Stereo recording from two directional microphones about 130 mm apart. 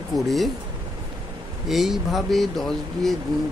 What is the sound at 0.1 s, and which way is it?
Speech, centre (ahead or behind).